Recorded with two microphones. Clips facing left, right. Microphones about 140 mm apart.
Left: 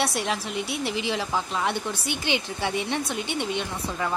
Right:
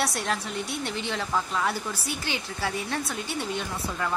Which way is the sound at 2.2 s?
20° left (ahead or behind).